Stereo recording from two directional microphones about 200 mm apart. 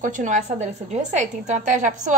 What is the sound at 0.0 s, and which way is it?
A woman's voice, 40° right (ahead or behind).